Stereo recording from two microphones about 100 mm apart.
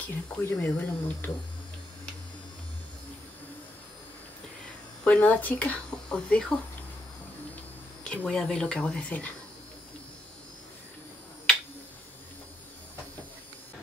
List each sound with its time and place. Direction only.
0.0 s speech: 20° left (ahead or behind)
5.0 s speech: 15° left (ahead or behind)
8.0 s speech: 10° left (ahead or behind)